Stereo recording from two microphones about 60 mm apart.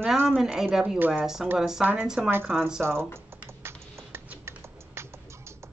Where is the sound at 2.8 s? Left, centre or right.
Right.